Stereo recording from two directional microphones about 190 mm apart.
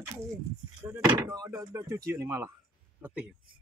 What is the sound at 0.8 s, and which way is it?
A man's voice, 10° right (ahead or behind).